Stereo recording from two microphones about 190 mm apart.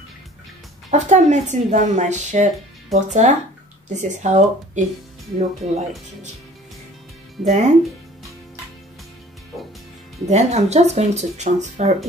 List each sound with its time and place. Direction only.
0.8 s a woman's voice: 40° right (ahead or behind)
7.4 s a woman's voice: 40° right (ahead or behind)
10.2 s a woman's voice: 35° right (ahead or behind)